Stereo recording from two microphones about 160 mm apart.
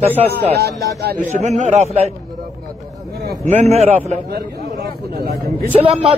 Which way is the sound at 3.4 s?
45° right (ahead or behind).